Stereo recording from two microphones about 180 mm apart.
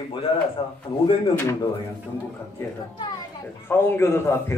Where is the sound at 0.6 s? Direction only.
30° left (ahead or behind).